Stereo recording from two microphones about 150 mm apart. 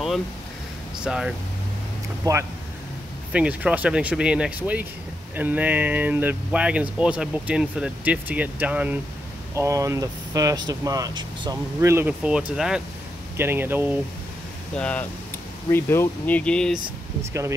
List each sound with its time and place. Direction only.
1.0 s speech: 5° right (ahead or behind)
2.3 s speech: 25° right (ahead or behind)
3.3 s speech: 10° right (ahead or behind)
9.6 s speech: 20° right (ahead or behind)
11.8 s speech: 15° right (ahead or behind)
14.8 s speech: 10° left (ahead or behind)
17.2 s speech: 20° right (ahead or behind)